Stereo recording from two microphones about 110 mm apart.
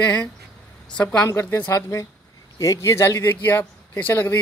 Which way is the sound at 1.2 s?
25° left (ahead or behind).